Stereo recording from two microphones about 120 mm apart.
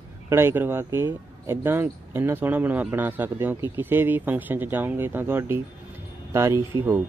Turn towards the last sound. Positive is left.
turn(degrees=-20)  # may be behind; listen again after turning